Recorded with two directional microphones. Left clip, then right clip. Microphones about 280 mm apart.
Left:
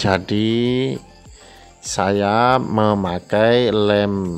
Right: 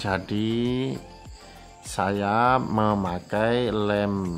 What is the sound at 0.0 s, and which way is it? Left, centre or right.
Speech, left.